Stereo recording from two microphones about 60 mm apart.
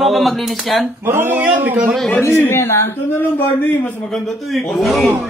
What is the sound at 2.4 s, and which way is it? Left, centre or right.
Speech, left.